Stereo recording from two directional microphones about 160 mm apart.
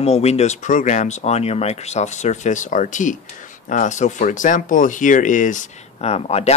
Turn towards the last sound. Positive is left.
turn(degrees=40)  # may be behind; listen again after turning